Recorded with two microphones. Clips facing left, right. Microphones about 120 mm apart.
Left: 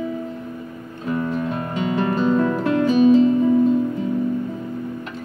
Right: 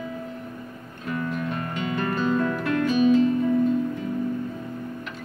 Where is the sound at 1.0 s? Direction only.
25° left (ahead or behind).